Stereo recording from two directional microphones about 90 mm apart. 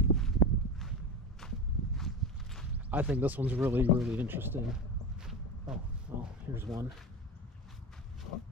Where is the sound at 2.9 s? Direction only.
20° right (ahead or behind).